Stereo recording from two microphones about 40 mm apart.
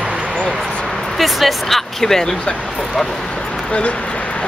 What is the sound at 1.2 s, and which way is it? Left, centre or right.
Speech, centre.